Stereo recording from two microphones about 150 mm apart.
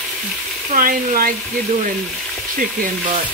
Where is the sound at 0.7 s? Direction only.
70° right (ahead or behind).